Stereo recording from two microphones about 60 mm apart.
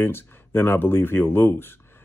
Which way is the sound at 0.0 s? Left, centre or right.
Left.